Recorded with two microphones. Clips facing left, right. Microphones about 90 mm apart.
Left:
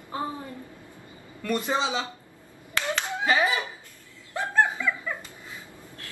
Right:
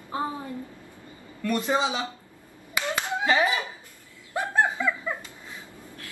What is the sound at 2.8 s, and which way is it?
Clapping, 20° right (ahead or behind).